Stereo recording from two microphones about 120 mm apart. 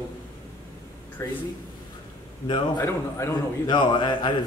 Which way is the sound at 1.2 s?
25° left (ahead or behind).